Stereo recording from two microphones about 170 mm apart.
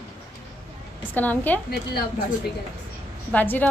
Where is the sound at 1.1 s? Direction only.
10° left (ahead or behind).